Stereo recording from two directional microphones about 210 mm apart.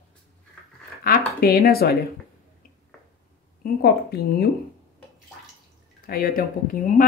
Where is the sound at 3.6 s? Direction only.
50° left (ahead or behind).